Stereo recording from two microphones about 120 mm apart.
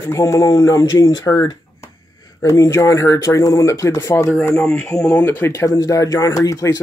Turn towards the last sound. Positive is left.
turn(degrees=30)  # may be behind; listen again after turning